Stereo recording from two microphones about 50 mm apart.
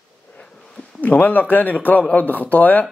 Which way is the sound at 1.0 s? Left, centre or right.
Left.